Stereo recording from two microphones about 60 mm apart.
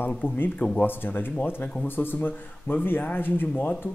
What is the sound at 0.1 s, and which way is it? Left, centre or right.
Speech, centre.